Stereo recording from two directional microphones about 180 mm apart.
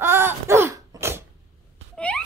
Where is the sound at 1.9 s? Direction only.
5° left (ahead or behind).